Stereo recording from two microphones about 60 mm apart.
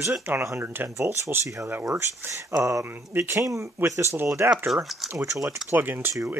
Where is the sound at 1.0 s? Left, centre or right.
Right.